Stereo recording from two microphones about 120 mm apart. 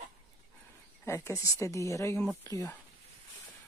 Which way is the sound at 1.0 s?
25° left (ahead or behind).